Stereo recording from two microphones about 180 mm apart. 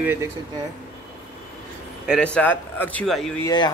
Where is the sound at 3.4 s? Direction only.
25° left (ahead or behind).